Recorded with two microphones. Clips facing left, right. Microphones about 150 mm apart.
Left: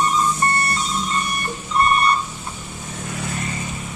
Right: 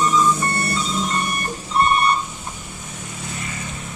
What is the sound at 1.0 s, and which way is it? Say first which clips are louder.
Music: right 1 dB; 80° right.